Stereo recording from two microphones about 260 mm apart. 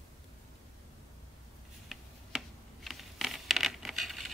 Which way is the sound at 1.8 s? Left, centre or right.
Centre.